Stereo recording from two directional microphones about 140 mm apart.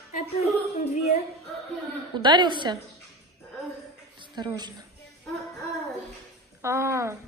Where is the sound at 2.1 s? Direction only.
35° right (ahead or behind).